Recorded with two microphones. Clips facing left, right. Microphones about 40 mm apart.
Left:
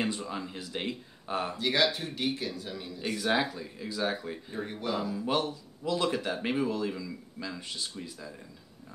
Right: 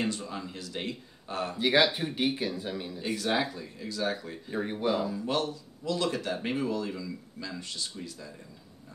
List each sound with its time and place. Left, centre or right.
0.0 s speech: centre
1.6 s speech: right
3.2 s speech: centre
4.5 s speech: centre
5.2 s speech: centre